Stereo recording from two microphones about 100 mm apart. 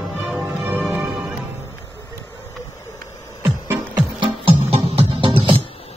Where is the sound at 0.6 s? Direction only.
20° right (ahead or behind).